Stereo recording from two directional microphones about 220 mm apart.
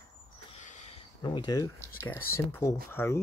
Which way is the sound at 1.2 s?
20° left (ahead or behind).